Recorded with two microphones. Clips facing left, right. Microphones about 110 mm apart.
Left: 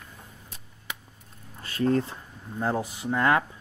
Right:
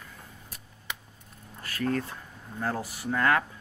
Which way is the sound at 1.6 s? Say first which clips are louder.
Left 5 dB; 25° left (ahead or behind).